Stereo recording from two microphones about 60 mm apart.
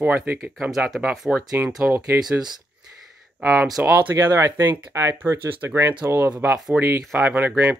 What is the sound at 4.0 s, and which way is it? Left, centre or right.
Speech, right.